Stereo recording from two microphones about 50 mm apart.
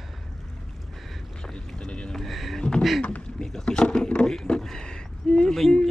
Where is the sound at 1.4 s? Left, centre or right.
Centre.